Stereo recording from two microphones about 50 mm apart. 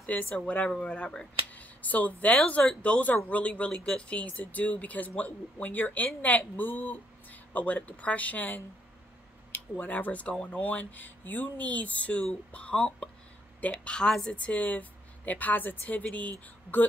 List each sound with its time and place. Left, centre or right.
0.0 s speech: left
1.5 s a sound: left
2.8 s speech: left
13.9 s speech: centre
14.3 s speech: left